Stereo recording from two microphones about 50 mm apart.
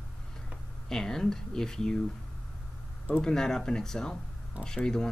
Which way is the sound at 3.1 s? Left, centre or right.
Centre.